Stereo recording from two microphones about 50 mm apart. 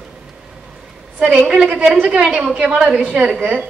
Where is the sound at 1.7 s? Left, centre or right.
Right.